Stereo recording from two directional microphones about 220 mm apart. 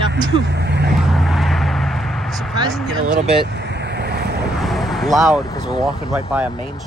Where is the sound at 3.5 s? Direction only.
50° right (ahead or behind).